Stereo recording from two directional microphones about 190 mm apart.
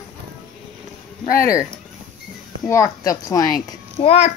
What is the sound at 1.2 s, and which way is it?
Speech, 45° left (ahead or behind).